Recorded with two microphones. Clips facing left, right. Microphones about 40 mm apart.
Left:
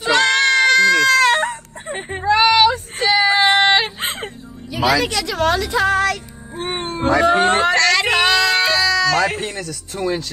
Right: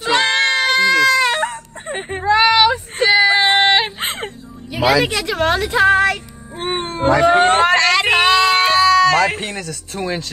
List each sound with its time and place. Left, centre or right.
0.1 s baby cry: centre
1.5 s whimper: right
2.2 s a sound: centre
2.6 s a sound: right
4.0 s music: right
4.7 s a woman's voice: centre
5.0 s a woman's voice: right
6.5 s cat: right
7.4 s speech: right
7.7 s a sound: right
9.4 s a woman's voice: right